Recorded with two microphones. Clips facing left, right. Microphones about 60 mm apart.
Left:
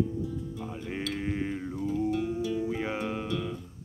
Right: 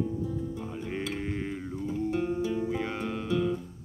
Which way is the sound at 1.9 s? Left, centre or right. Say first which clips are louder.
Even; right.